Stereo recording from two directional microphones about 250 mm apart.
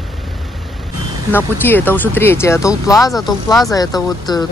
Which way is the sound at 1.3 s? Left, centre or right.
Centre.